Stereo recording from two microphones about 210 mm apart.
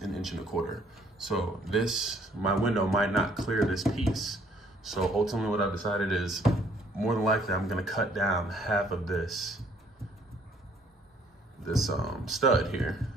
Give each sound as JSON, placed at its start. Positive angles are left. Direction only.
{"t": 0.0, "sound": "speech", "side_deg": 0}
{"t": 11.6, "sound": "speech", "side_deg": 0}